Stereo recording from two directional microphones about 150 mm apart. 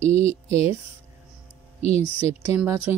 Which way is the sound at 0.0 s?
40° left (ahead or behind).